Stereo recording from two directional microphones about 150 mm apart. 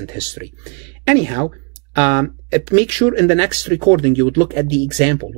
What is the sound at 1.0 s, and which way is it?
Speech, 20° right (ahead or behind).